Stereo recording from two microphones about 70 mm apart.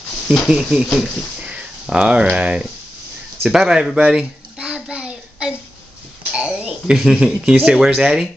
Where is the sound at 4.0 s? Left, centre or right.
Centre.